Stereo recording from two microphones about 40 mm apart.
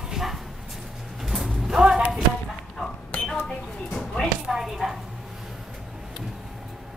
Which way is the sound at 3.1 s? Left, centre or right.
Left.